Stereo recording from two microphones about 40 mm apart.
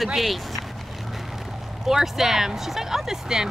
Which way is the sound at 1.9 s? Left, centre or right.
Centre.